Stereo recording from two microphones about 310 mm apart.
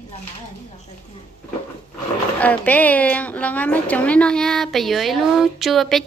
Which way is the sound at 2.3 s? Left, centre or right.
Centre.